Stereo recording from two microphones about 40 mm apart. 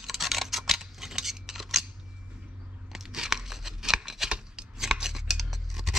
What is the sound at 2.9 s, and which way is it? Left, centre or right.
Tearing, centre.